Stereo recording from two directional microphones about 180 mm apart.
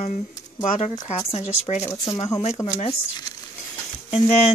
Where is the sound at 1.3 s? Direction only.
40° left (ahead or behind).